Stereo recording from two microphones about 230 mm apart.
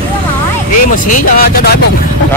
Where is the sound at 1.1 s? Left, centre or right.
Left.